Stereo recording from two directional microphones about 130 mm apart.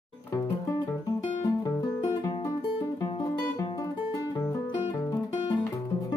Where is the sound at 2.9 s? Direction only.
35° left (ahead or behind).